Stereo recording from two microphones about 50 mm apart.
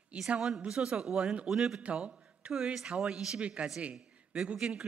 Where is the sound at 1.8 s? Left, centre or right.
Right.